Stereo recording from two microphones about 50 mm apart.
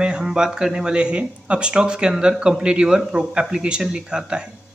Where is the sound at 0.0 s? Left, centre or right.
Centre.